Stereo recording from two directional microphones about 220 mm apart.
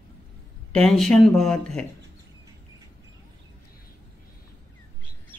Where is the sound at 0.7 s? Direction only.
5° left (ahead or behind).